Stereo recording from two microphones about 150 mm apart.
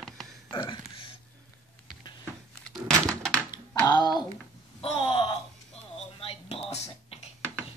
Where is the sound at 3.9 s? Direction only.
30° left (ahead or behind).